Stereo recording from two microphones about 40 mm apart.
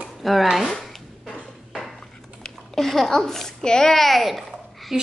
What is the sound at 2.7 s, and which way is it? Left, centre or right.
A child's voice, centre.